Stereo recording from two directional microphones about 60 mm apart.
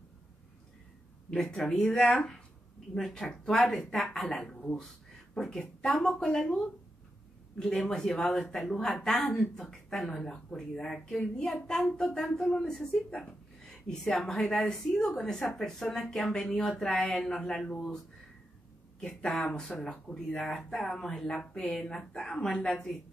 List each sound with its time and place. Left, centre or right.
1.3 s speech: centre
4.6 s speech: centre
19.4 s speech: centre